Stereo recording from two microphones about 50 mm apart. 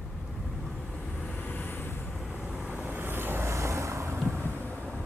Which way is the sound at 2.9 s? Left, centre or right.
Right.